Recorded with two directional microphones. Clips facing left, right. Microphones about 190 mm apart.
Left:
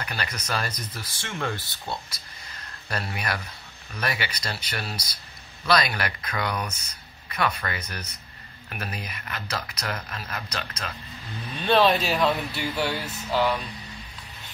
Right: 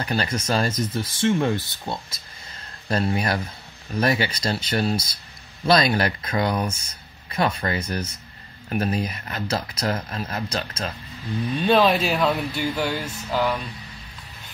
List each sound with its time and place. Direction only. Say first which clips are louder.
0.0 s speech: right 8 dB; 30° right (ahead or behind)
11.7 s speech: right 1 dB; centre (ahead or behind)
12.8 s a sound: right 2 dB; 5° right (ahead or behind)